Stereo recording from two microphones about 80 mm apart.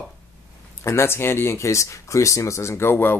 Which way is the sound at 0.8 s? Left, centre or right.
Left.